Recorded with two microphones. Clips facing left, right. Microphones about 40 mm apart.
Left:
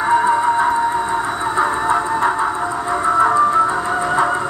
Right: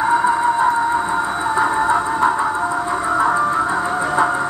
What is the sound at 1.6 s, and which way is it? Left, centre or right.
Music, centre.